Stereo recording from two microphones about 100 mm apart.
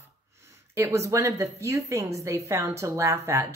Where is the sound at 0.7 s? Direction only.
30° right (ahead or behind).